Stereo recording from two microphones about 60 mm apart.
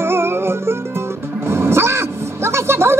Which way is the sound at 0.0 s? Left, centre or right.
Right.